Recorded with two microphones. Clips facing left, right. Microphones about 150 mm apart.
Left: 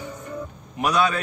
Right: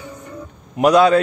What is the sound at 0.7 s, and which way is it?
Speech, 75° right (ahead or behind).